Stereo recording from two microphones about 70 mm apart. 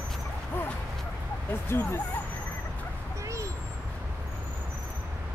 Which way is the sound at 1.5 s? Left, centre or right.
Left.